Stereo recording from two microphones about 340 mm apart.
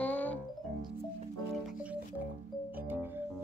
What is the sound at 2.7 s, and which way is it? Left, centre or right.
Music, centre.